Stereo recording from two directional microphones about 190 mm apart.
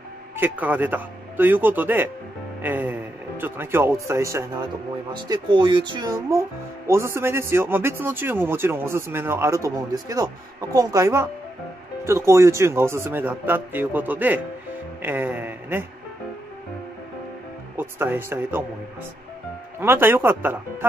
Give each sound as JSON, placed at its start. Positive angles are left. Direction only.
{"t": 0.4, "sound": "speech", "side_deg": -10}
{"t": 17.7, "sound": "speech", "side_deg": -10}
{"t": 19.8, "sound": "speech", "side_deg": -10}